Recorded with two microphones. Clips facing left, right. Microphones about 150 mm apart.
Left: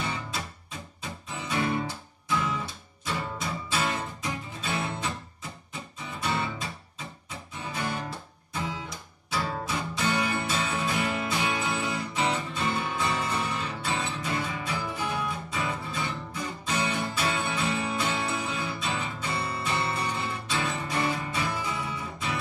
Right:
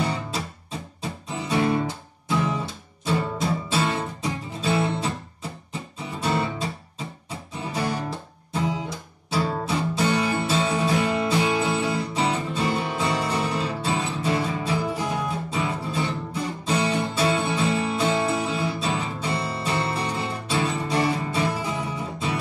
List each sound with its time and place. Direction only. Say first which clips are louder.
0.0 s music: right 6 dB; 35° right (ahead or behind)
6.2 s music: right 5 dB; 35° right (ahead or behind)